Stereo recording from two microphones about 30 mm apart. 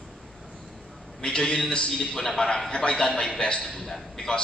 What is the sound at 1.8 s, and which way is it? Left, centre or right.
Speech, centre.